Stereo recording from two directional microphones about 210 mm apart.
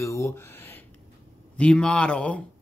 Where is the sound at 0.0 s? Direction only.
15° left (ahead or behind).